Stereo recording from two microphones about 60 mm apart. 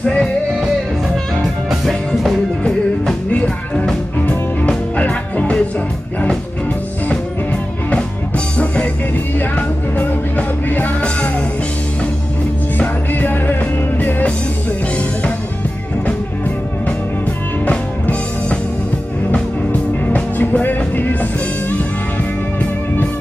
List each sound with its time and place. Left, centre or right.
0.0 s music: centre
3.3 s music: centre
9.6 s music: left
12.7 s music: left
17.6 s music: left
20.1 s music: left